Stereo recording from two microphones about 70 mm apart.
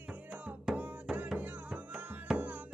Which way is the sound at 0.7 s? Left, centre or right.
Centre.